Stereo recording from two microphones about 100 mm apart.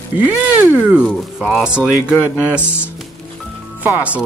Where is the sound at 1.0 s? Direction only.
5° right (ahead or behind).